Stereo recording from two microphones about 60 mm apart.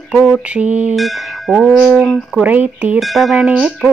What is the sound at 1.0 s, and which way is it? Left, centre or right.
Speech, centre.